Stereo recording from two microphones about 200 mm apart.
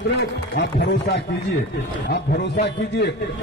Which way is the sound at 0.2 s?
55° left (ahead or behind).